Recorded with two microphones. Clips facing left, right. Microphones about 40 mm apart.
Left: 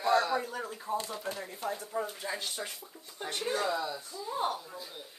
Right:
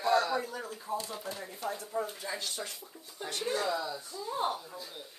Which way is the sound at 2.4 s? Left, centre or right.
Left.